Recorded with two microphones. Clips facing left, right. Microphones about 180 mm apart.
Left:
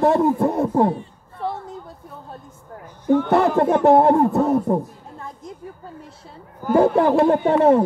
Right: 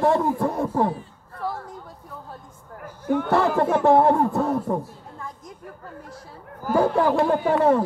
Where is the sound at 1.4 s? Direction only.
25° left (ahead or behind).